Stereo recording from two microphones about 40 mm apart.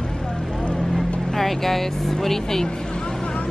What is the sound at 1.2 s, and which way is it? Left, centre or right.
Speech, centre.